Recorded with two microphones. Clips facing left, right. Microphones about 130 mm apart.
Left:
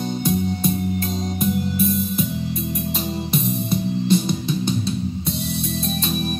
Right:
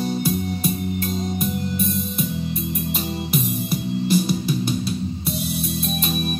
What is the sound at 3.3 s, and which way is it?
Music, 25° left (ahead or behind).